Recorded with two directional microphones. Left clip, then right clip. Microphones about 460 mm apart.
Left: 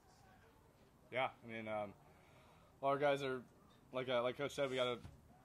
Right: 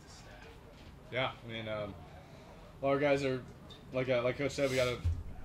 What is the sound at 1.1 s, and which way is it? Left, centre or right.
A man's voice, left.